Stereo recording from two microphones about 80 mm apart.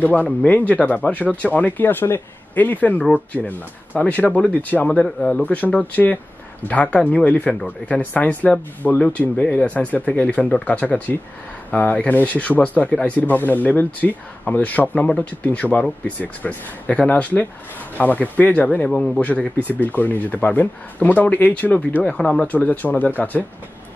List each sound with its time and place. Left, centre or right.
0.0 s speech: centre
6.7 s speech: centre
18.9 s speech: centre
19.8 s speech: left
22.5 s speech: left